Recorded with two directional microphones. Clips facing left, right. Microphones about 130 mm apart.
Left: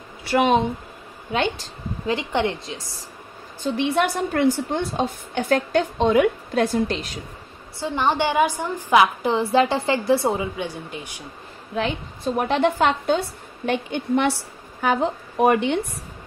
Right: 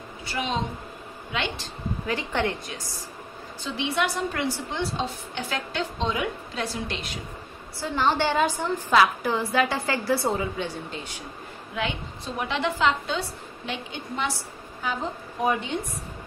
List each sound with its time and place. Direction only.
0.2 s a woman's voice: 65° left (ahead or behind)
2.0 s a woman's voice: 20° left (ahead or behind)
3.6 s a woman's voice: 50° left (ahead or behind)
6.9 s speech: 40° left (ahead or behind)
7.8 s a woman's voice: 20° left (ahead or behind)
12.4 s a woman's voice: 45° left (ahead or behind); by 15.9 s 65° left (ahead or behind)